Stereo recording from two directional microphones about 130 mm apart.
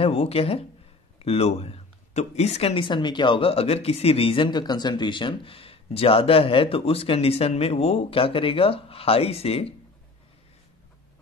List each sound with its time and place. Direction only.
0.0 s speech: 50° left (ahead or behind)